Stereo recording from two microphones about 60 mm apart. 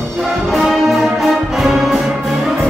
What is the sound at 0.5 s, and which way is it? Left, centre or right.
Music, centre.